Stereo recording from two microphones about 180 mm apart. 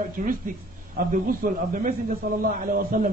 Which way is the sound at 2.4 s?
50° right (ahead or behind).